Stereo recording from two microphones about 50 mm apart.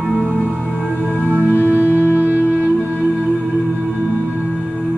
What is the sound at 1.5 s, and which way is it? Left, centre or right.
Music, left.